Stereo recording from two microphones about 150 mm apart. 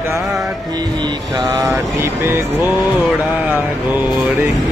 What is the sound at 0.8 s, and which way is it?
Mantra, 30° right (ahead or behind).